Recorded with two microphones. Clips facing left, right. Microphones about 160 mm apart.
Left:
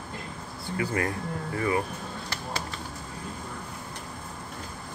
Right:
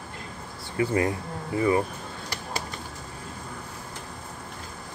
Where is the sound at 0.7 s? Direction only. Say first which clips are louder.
Right 4 dB; 25° right (ahead or behind).